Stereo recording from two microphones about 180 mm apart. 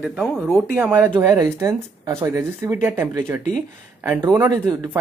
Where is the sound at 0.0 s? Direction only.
Centre (ahead or behind).